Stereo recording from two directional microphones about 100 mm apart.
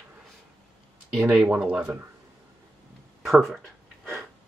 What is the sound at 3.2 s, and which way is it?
Speech, centre (ahead or behind).